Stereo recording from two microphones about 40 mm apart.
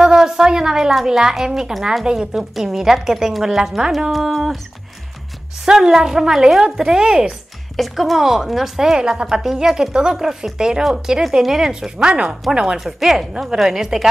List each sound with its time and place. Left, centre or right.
0.0 s a sound: centre
1.0 s a woman's voice: centre
5.7 s a woman's voice: centre
7.7 s a woman's voice: centre
8.9 s a woman's voice: right
12.8 s a woman's voice: centre